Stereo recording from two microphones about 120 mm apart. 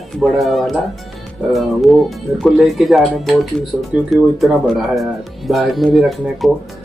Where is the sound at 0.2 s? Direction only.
Centre (ahead or behind).